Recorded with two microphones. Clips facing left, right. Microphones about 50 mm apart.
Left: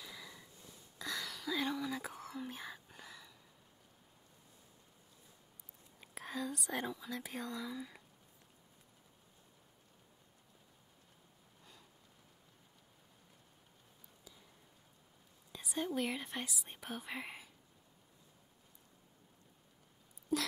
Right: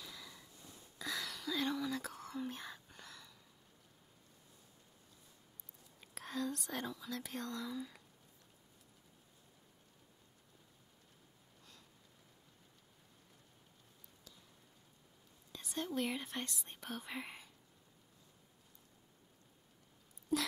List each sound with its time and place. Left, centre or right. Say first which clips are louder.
0.0 s a sound: left 2 dB; centre
0.7 s whispering: even; centre
5.9 s whispering: even; centre
6.8 s speech: left 2 dB; centre
15.5 s speech: left 2 dB; centre
20.3 s a sound: even; centre